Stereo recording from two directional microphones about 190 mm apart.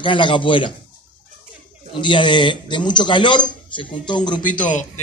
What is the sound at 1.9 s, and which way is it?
A man's voice, 25° left (ahead or behind).